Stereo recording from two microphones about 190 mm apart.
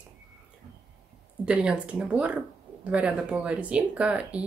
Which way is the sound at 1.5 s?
5° right (ahead or behind).